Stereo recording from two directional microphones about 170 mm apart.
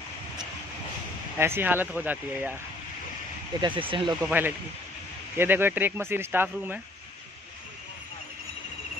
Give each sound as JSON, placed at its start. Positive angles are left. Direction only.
{"t": 1.4, "sound": "speech", "side_deg": -15}
{"t": 3.6, "sound": "speech", "side_deg": -30}
{"t": 4.2, "sound": "speech", "side_deg": -10}